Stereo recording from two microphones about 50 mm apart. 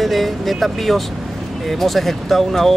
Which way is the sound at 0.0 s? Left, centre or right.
Centre.